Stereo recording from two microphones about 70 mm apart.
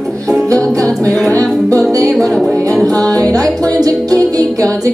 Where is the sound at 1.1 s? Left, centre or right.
Centre.